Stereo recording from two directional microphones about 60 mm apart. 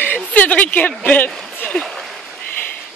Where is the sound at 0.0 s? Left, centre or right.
Left.